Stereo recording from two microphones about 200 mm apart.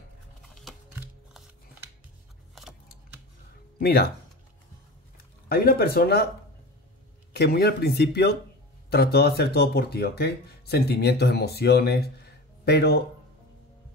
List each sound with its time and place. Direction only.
3.8 s speech: 50° left (ahead or behind)
5.1 s speech: 50° left (ahead or behind)
7.3 s speech: 55° left (ahead or behind)